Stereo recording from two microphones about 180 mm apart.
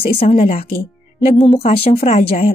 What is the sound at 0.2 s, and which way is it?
Speech, 35° left (ahead or behind).